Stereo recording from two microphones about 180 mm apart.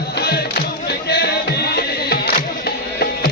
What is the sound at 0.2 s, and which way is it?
Music, 60° left (ahead or behind).